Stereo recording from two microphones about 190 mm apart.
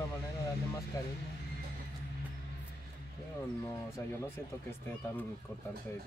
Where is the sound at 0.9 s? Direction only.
20° left (ahead or behind).